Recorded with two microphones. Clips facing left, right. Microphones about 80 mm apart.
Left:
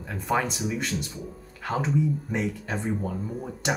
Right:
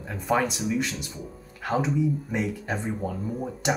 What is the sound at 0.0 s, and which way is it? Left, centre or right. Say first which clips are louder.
Speech: right 2 dB; centre.